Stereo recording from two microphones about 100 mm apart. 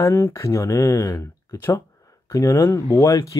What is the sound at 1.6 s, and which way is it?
Speech, 20° left (ahead or behind).